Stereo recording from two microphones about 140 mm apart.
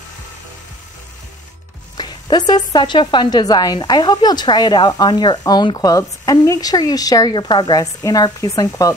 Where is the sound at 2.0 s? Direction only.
30° left (ahead or behind).